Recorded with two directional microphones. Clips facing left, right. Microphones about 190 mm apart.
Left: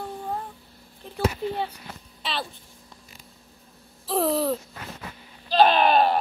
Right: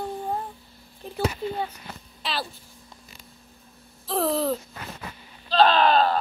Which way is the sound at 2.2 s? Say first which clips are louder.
Even; centre (ahead or behind).